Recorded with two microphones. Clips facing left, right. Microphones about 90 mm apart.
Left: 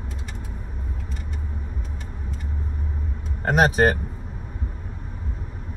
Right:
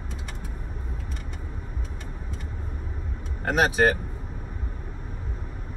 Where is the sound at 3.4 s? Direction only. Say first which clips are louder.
Left 3 dB; 40° left (ahead or behind).